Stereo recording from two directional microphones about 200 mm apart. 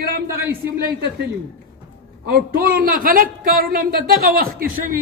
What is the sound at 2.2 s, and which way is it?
Speech, 50° right (ahead or behind).